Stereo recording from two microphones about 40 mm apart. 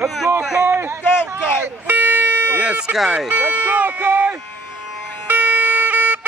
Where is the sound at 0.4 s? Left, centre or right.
Centre.